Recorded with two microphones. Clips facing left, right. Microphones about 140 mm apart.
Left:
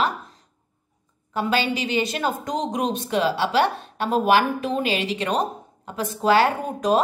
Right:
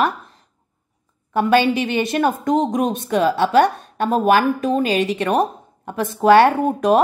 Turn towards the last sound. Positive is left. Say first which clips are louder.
# right 6 dB
turn(degrees=-60)  # may be behind; listen again after turning